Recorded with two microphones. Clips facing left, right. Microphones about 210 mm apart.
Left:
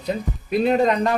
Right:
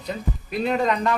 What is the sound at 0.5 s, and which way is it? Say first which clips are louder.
Speech: left 5 dB; 40° left (ahead or behind).